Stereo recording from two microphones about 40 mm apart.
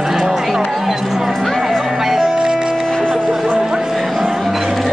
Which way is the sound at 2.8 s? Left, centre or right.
Centre.